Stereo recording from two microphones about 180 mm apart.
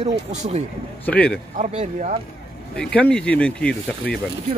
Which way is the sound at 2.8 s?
5° left (ahead or behind).